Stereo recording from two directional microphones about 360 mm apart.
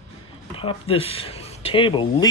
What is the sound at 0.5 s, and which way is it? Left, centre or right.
Speech, centre.